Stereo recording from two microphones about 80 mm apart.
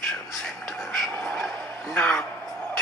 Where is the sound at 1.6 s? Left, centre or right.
Centre.